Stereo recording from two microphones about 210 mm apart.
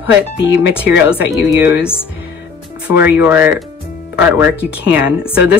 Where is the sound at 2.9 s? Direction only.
10° right (ahead or behind).